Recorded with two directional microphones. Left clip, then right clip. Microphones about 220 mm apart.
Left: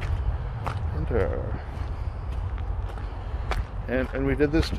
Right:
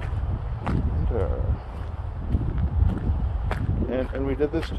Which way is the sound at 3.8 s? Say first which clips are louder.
Left 1 dB; 20° left (ahead or behind).